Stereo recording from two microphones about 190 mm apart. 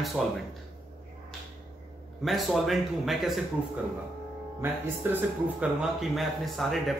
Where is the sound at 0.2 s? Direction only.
Centre (ahead or behind).